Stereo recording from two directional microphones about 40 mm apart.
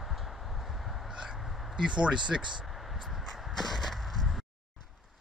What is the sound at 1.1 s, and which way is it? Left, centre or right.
Crow, centre.